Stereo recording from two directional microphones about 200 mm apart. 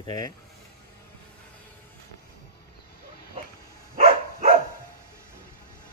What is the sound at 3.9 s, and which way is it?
Dog, 45° right (ahead or behind).